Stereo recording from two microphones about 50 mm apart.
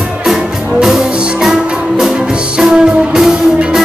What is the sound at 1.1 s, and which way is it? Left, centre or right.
Music, right.